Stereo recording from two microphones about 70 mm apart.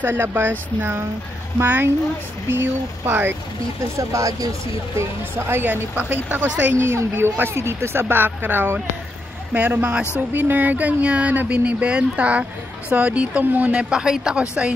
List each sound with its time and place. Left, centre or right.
0.0 s speech: right
3.9 s speech: right
5.3 s speech: right
6.9 s speech: right; by 14.7 s centre